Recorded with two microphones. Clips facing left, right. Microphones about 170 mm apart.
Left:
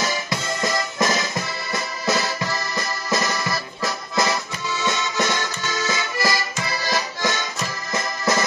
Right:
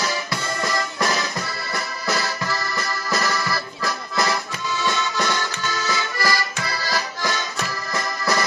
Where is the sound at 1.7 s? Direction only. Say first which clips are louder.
Left 3 dB; 20° left (ahead or behind).